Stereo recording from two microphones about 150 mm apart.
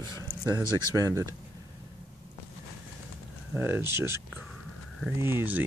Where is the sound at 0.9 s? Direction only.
20° right (ahead or behind).